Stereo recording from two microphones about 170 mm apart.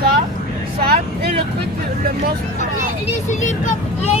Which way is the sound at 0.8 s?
65° right (ahead or behind).